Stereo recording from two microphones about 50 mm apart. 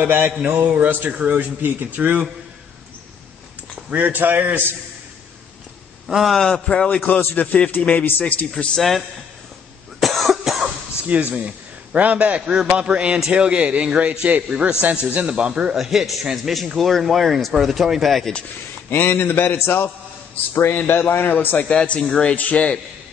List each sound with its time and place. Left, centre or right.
0.0 s speech: right
3.9 s speech: right
6.0 s a man's voice: centre
6.3 s a man's voice: centre
6.7 s speech: left
8.5 s a man's voice: centre
9.9 s cough: centre
11.1 s a man's voice: right
15.7 s a man's voice: centre
18.9 s a man's voice: left
21.6 s speech: centre
22.3 s speech: left